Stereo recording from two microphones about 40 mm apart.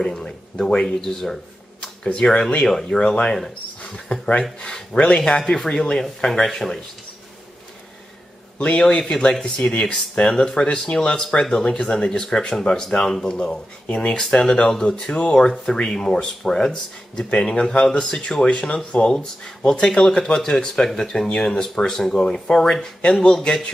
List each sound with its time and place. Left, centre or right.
0.0 s speech: centre
1.0 s a sound: centre
2.1 s speech: left
2.6 s speech: centre
8.5 s a man's voice: left
8.8 s speech: left
13.8 s speech: left
14.3 s speech: centre
20.3 s speech: centre